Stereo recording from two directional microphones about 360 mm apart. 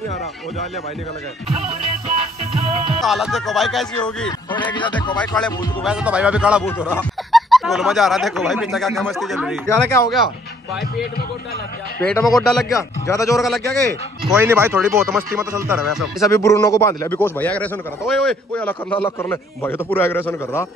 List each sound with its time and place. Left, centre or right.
1.5 s music: centre
3.0 s a man's voice: centre
4.5 s a man's voice: centre
12.0 s a man's voice: centre